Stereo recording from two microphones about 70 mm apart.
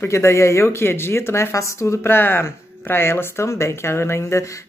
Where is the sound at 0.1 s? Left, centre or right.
Left.